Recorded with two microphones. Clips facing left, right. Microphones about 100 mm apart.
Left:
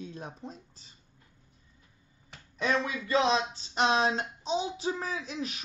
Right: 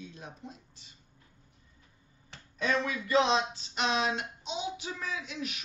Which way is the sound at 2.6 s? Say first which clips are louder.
Left 1 dB; 30° left (ahead or behind).